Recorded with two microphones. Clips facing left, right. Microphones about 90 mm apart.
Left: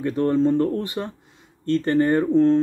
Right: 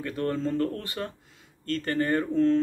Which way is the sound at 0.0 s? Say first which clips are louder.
Left 9 dB; 25° left (ahead or behind).